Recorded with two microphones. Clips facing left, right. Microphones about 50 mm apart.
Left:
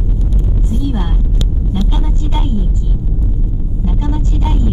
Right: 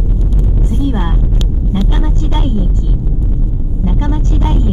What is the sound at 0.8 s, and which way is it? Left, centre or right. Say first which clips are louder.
Vehicle: right 3 dB; right.